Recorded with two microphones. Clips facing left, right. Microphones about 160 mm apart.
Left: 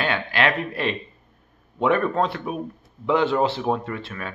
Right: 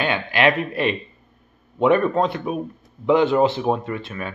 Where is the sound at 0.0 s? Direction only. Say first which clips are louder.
Right 3 dB; 10° right (ahead or behind).